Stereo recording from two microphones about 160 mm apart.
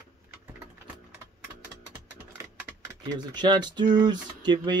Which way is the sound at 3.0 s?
25° right (ahead or behind).